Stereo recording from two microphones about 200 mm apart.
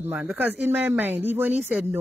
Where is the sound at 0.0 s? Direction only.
10° right (ahead or behind).